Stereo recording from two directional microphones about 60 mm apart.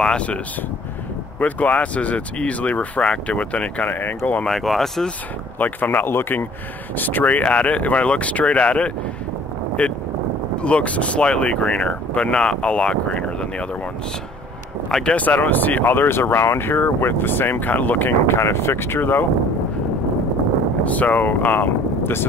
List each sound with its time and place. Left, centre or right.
0.0 s speech: centre
1.4 s speech: left
4.5 s speech: centre
5.6 s speech: left
14.9 s speech: centre
15.1 s speech: left
18.4 s speech: left
20.8 s speech: left